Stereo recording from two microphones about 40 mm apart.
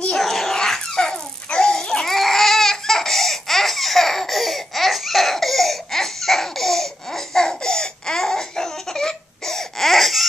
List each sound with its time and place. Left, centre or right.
0.1 s a sound: centre
1.5 s babbling: centre
2.0 s baby cry: centre